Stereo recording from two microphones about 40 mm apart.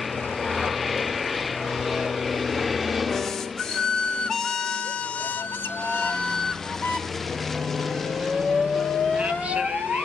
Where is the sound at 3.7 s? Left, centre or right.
Centre.